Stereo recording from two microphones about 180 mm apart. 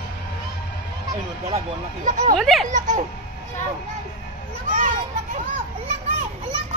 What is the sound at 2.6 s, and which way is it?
Speech, 45° right (ahead or behind).